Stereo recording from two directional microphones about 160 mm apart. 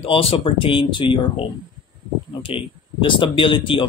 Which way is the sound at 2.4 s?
35° left (ahead or behind).